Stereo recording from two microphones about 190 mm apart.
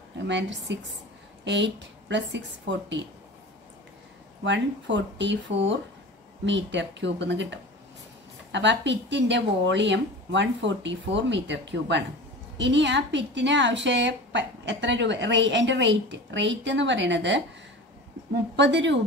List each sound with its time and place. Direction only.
0.3 s a woman's voice: 70° right (ahead or behind)
4.5 s a woman's voice: 70° right (ahead or behind)